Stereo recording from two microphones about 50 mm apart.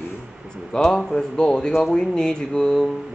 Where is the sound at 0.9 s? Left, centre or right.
Centre.